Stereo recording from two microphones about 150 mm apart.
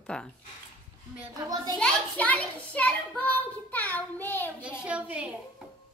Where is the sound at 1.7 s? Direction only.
10° left (ahead or behind).